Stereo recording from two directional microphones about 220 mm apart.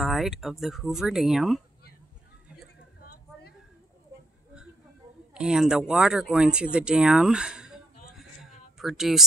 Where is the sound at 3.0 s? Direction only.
40° left (ahead or behind).